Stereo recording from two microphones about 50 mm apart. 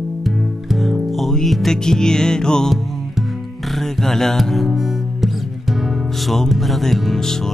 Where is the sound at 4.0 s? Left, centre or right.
Centre.